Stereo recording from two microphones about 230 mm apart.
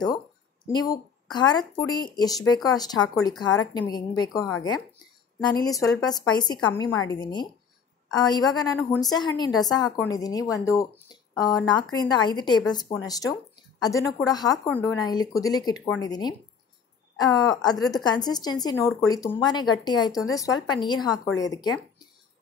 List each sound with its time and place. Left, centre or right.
0.7 s speech: centre